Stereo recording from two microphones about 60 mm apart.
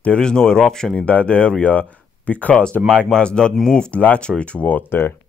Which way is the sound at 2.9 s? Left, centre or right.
Centre.